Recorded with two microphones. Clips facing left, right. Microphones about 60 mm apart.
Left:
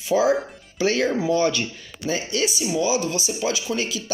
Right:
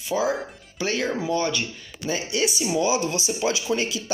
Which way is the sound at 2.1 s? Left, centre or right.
Centre.